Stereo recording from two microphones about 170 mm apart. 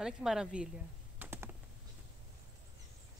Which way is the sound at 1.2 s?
10° right (ahead or behind).